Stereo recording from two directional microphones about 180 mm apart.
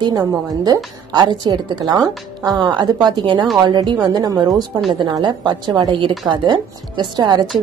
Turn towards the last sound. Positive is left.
turn(degrees=-25)  # may be behind; listen again after turning